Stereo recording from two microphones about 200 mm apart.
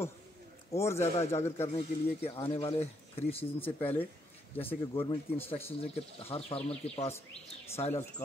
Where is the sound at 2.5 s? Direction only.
25° left (ahead or behind).